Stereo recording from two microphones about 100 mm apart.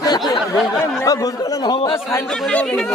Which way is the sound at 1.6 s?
50° left (ahead or behind).